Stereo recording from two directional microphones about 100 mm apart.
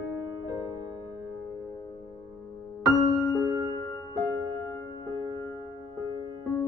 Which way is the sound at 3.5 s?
45° right (ahead or behind).